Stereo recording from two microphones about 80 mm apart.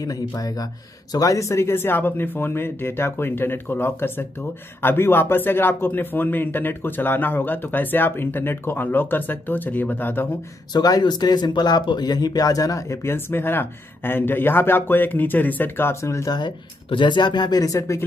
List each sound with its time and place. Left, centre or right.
0.4 s speech: left
10.7 s speech: left
16.3 s speech: left